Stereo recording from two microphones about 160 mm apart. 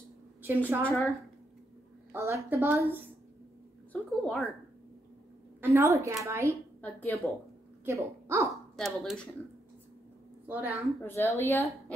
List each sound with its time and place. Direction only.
0.4 s a woman's voice: 10° right (ahead or behind)
2.1 s speech: 15° right (ahead or behind)
3.9 s speech: 5° left (ahead or behind)
5.6 s speech: 15° right (ahead or behind)
6.8 s a woman's voice: 10° left (ahead or behind)
7.8 s speech: 15° right (ahead or behind)
8.7 s speech: centre (ahead or behind)
10.4 s a woman's voice: 10° right (ahead or behind)
11.0 s a woman's voice: 15° left (ahead or behind)